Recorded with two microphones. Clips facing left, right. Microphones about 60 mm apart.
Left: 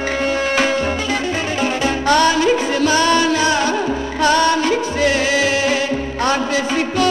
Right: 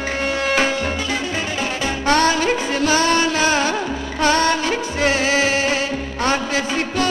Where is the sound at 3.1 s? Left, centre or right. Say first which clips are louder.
Left 2 dB; right.